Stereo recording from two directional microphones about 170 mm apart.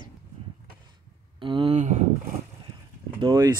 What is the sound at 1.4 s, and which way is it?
Speech, 30° right (ahead or behind).